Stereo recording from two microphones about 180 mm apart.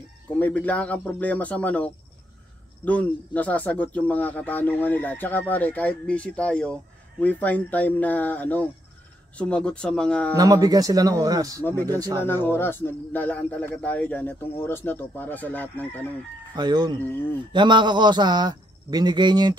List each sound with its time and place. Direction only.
0.4 s speech: 10° left (ahead or behind)
10.3 s a man's voice: 20° right (ahead or behind)
12.2 s speech: 10° left (ahead or behind)
16.5 s a man's voice: 25° right (ahead or behind)